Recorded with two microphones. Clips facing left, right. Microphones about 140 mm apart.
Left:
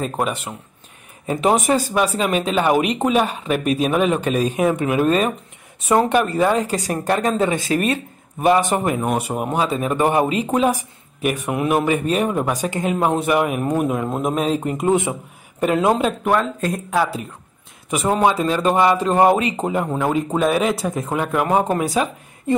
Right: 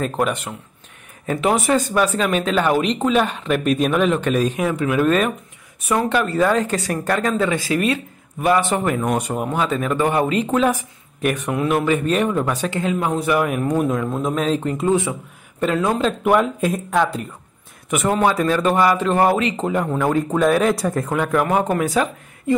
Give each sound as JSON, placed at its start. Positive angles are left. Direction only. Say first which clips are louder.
{"t": 0.0, "sound": "speech", "louder": "right 2 dB", "side_deg": 5}
{"t": 1.2, "sound": "speech", "louder": "left 1 dB", "side_deg": 20}
{"t": 4.7, "sound": "speech", "louder": "even", "side_deg": 20}
{"t": 5.0, "sound": "speech", "louder": "even", "side_deg": 35}
{"t": 6.9, "sound": "speech", "louder": "left 1 dB", "side_deg": 25}
{"t": 12.9, "sound": "speech", "louder": "left 5 dB", "side_deg": 30}
{"t": 13.2, "sound": "speech", "louder": "left 1 dB", "side_deg": 20}
{"t": 13.5, "sound": "speech", "louder": "even", "side_deg": 10}
{"t": 16.3, "sound": "speech", "louder": "right 5 dB", "side_deg": -5}
{"t": 16.9, "sound": "speech", "louder": "even", "side_deg": 5}
{"t": 17.8, "sound": "speech", "louder": "left 1 dB", "side_deg": 25}